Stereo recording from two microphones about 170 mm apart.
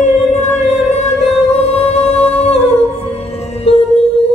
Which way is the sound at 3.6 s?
35° left (ahead or behind).